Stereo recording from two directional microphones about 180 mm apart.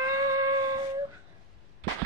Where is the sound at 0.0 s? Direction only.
20° right (ahead or behind).